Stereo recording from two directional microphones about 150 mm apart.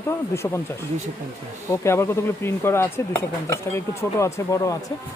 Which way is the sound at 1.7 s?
20° left (ahead or behind).